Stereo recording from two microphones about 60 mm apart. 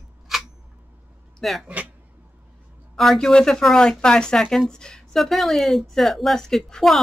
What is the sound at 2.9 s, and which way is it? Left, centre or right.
A woman's voice, centre.